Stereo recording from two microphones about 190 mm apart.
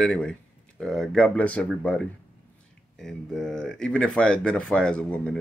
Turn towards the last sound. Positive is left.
turn(degrees=5)  # may be behind; listen again after turning